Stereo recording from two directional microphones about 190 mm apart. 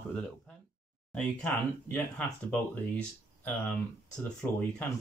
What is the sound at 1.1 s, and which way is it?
Speech, 5° left (ahead or behind).